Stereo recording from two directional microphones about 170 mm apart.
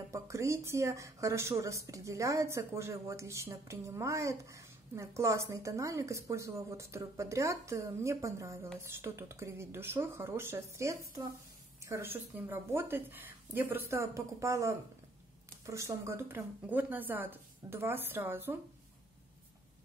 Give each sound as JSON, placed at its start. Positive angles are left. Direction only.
{"t": 0.1, "sound": "speech", "side_deg": -15}